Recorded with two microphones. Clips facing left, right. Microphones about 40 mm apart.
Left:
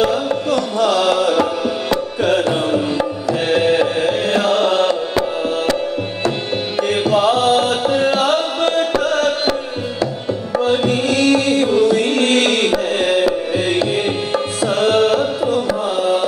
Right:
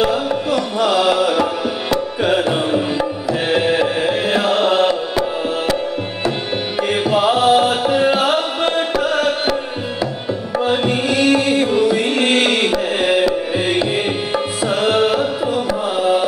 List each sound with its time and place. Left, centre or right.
0.0 s music: centre
2.2 s tabla: centre
7.1 s tabla: centre
10.6 s music: centre
13.5 s tabla: centre